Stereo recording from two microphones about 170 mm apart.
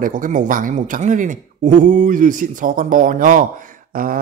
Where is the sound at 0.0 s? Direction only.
50° right (ahead or behind).